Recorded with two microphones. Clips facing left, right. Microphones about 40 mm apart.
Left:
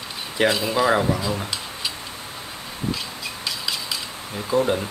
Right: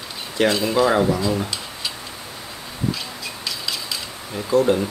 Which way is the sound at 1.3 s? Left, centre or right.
Centre.